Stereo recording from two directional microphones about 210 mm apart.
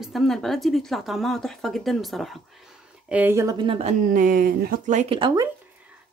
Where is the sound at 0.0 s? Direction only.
Centre (ahead or behind); by 3.9 s 25° right (ahead or behind).